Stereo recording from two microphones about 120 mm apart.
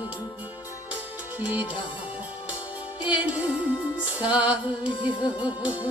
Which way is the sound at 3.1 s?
10° right (ahead or behind).